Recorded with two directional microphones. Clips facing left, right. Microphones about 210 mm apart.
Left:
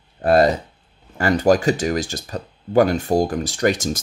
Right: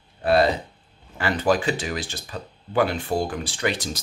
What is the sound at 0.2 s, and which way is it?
Speech, 45° left (ahead or behind).